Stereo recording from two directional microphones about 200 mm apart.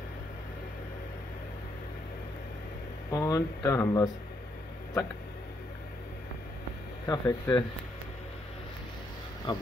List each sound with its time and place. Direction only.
3.1 s speech: 20° left (ahead or behind)
7.1 s speech: 20° left (ahead or behind)
9.5 s speech: 20° left (ahead or behind)